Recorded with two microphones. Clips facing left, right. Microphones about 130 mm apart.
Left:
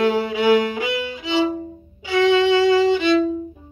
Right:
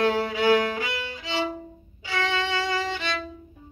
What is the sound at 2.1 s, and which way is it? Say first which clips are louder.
Violin: left 12 dB; 15° left (ahead or behind).